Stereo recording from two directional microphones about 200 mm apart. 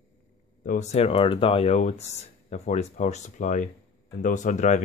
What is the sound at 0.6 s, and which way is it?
Speech, 40° left (ahead or behind).